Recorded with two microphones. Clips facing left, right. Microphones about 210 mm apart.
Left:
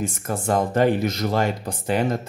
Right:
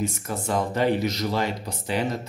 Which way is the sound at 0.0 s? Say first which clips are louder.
Left 2 dB; 50° left (ahead or behind).